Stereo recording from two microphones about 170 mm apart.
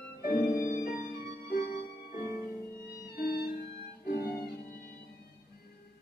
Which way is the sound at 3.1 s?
65° left (ahead or behind).